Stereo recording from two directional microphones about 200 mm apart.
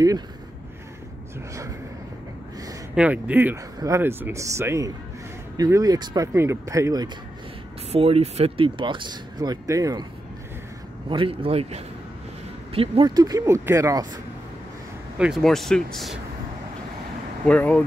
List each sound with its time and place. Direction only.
2.9 s speech: 5° right (ahead or behind)
7.9 s speech: 30° right (ahead or behind)
11.1 s speech: 25° right (ahead or behind)
15.1 s speech: 5° right (ahead or behind)
17.5 s speech: 5° left (ahead or behind)